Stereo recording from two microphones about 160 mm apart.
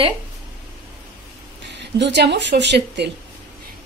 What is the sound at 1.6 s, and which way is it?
Speech, 90° right.